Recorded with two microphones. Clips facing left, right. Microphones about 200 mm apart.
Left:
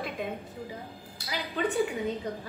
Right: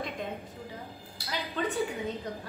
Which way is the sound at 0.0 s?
Centre (ahead or behind).